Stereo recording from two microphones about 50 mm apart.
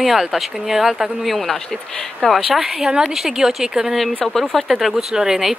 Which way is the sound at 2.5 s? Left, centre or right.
Centre.